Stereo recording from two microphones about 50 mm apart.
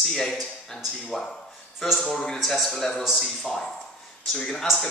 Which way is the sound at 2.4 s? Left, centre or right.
Centre.